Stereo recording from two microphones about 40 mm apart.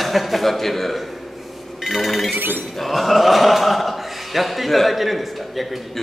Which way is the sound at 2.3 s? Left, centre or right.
Right.